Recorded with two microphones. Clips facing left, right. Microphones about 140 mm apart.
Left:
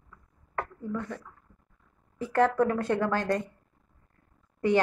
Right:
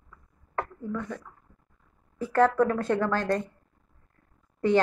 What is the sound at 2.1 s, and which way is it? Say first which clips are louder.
A woman's voice: right 2 dB; 20° left (ahead or behind).